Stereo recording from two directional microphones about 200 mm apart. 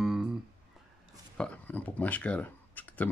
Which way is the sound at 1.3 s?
5° left (ahead or behind).